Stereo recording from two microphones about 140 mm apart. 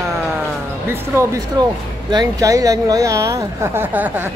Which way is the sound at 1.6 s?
30° right (ahead or behind).